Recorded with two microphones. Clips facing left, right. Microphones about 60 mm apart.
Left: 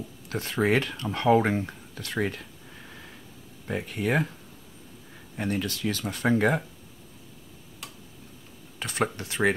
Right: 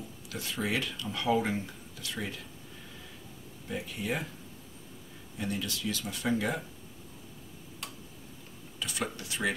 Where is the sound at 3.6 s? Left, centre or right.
Left.